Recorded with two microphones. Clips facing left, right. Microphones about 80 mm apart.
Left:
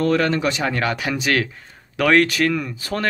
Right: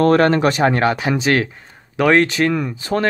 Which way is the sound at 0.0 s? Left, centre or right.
Right.